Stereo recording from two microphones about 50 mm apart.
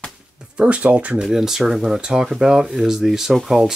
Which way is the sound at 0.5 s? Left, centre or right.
Right.